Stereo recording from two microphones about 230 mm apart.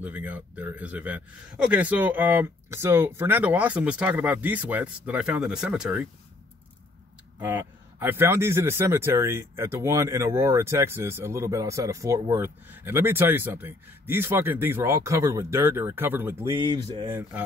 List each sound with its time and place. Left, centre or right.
0.0 s speech: centre
7.3 s speech: centre
16.6 s speech: right